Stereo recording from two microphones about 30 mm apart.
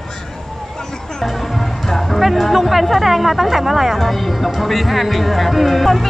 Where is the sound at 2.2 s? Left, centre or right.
Centre.